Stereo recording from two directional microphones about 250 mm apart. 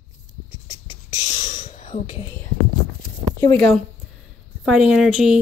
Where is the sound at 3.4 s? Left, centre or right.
Centre.